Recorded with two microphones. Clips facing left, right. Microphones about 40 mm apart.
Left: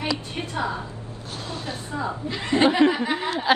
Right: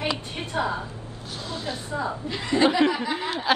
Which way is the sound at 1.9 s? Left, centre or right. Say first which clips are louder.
Even; centre.